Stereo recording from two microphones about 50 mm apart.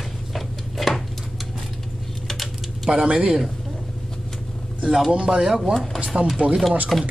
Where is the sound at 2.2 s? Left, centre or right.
Centre.